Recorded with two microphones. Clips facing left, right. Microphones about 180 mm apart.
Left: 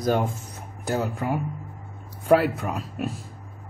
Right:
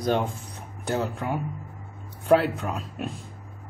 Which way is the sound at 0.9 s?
5° left (ahead or behind).